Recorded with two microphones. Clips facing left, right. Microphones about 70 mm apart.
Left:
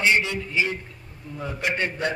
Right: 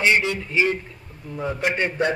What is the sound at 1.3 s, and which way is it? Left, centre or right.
Speech, right.